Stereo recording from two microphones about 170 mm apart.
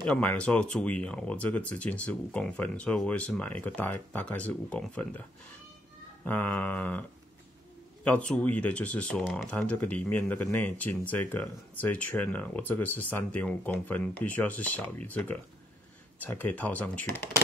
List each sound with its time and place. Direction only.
0.0 s speech: 5° left (ahead or behind)
6.2 s speech: 10° left (ahead or behind)
16.2 s speech: 10° left (ahead or behind)